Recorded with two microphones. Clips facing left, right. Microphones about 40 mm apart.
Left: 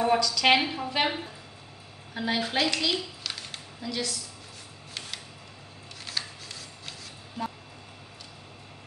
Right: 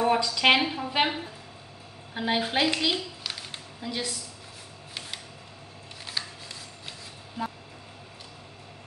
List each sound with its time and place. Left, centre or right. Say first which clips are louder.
0.2 s a woman's voice: right 1 dB; right
0.6 s a woman's voice: right 1 dB; centre
0.8 s a woman's voice: right 1 dB; centre
2.1 s a woman's voice: right 1 dB; centre
3.3 s a sound: even; centre
6.0 s shuffling cards: even; centre